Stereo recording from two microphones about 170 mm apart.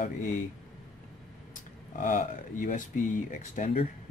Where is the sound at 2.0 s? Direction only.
50° left (ahead or behind).